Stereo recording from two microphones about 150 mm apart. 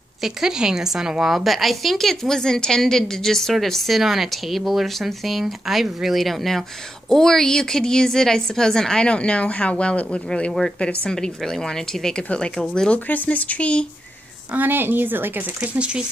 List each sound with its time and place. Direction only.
0.2 s a woman's voice: 5° right (ahead or behind)
14.5 s speech: 10° right (ahead or behind)